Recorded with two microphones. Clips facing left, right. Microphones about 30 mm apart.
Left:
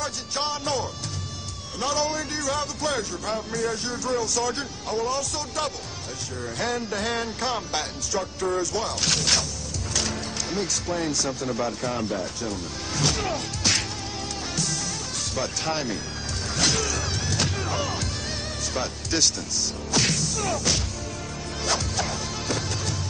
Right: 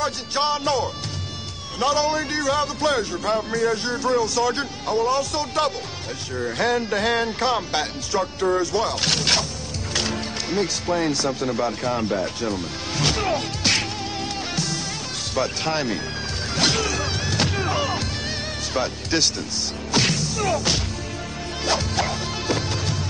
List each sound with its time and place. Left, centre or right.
0.0 s speech: right
14.5 s music: right
15.3 s speech: right
16.5 s music: right
18.7 s speech: right
19.9 s music: right